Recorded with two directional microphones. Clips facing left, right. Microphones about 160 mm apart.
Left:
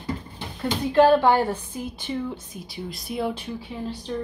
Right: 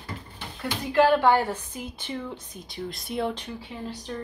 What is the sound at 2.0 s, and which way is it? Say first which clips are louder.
A woman's voice: left 5 dB; 5° left (ahead or behind).